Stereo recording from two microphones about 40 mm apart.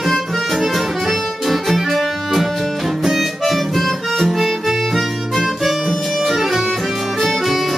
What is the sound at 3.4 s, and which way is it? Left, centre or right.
Harmonica, centre.